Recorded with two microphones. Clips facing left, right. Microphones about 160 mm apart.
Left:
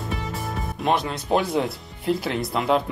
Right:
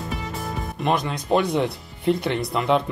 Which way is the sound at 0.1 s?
Centre (ahead or behind).